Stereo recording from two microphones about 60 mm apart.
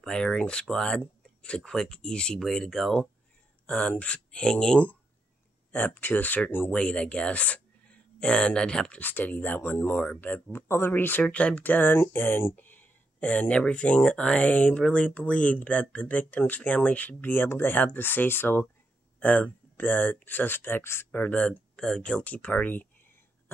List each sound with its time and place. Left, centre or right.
0.0 s speech: centre
3.6 s speech: left
5.7 s speech: left
6.7 s speech: centre
9.0 s speech: left
9.6 s speech: left
10.7 s speech: left
11.2 s speech: left
19.1 s a sound: left
19.8 s speech: left
21.1 s speech: left